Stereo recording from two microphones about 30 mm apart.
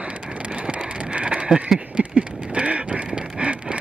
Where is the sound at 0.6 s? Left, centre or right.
Right.